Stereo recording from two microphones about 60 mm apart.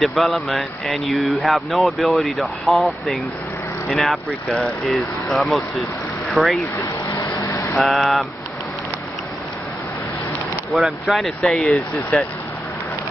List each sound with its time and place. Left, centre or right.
0.0 s speech: centre
6.8 s vehicle: left
7.8 s speech: centre
10.8 s speech: centre